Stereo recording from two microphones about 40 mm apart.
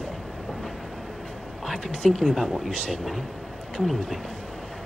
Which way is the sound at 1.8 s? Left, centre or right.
Left.